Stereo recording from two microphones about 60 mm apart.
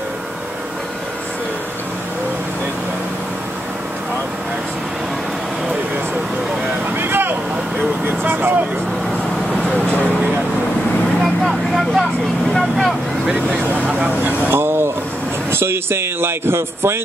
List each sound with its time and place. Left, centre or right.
7.0 s vehicle: right
11.4 s vehicle: centre
13.5 s vehicle: right
14.5 s air conditioning: right
15.5 s speech: right